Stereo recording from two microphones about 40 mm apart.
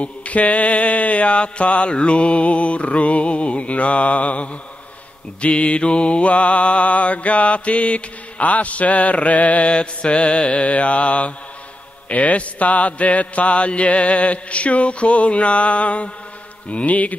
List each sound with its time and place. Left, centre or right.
0.0 s mantra: left